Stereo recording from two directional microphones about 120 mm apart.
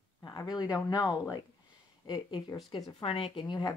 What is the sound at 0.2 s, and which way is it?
Speech, 35° left (ahead or behind).